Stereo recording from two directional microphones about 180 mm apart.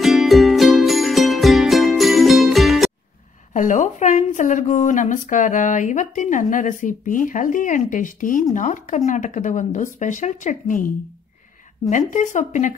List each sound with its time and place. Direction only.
0.0 s music: centre (ahead or behind)
3.5 s a woman's voice: 45° left (ahead or behind)
11.9 s a woman's voice: 45° left (ahead or behind)